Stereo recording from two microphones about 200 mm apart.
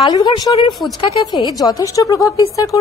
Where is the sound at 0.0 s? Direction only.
20° left (ahead or behind).